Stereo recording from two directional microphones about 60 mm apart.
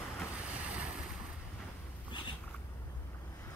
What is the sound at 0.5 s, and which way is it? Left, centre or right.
Boat, right.